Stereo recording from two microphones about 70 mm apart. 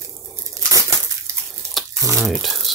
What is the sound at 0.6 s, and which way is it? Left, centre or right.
Crushing, right.